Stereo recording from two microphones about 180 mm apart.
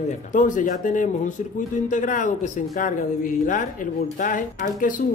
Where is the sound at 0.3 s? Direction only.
45° left (ahead or behind).